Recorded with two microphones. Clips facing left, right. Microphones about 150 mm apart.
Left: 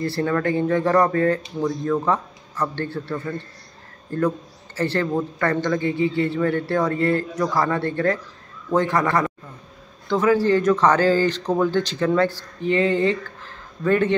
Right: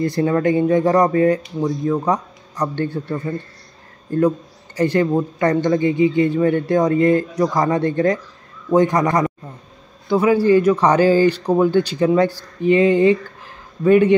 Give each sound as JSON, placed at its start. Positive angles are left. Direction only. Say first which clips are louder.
{"t": 0.0, "sound": "speech", "louder": "right 5 dB", "side_deg": -20}